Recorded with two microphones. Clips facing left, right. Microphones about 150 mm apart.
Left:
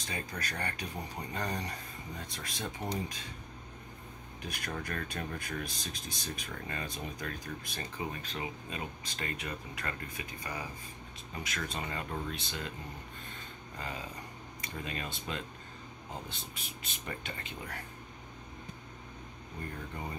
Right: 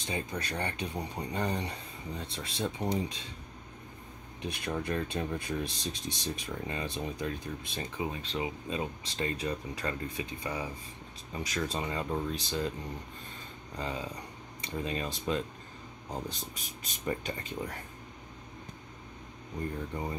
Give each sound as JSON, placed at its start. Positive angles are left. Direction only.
{"t": 0.0, "sound": "speech", "side_deg": -25}
{"t": 4.4, "sound": "speech", "side_deg": -25}
{"t": 13.7, "sound": "speech", "side_deg": -30}